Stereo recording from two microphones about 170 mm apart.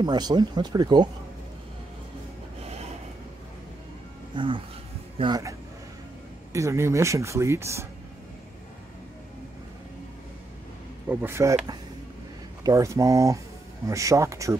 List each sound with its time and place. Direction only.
0.0 s speech: 25° right (ahead or behind)
2.6 s a sound: 40° right (ahead or behind)
4.3 s speech: 30° right (ahead or behind)
11.1 s speech: 15° right (ahead or behind)